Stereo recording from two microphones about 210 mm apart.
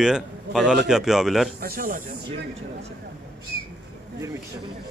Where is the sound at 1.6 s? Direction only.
40° right (ahead or behind).